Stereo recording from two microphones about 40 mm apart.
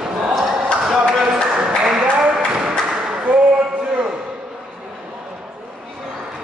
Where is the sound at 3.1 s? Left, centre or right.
Right.